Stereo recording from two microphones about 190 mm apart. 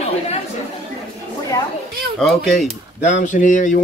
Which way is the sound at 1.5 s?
20° left (ahead or behind).